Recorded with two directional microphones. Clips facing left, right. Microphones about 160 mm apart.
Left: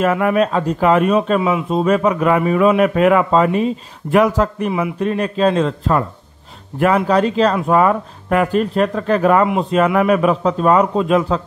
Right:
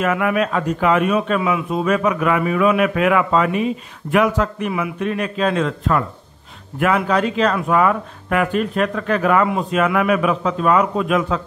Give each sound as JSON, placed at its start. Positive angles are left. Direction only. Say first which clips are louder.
{"t": 0.0, "sound": "speech", "louder": "left 3 dB", "side_deg": 35}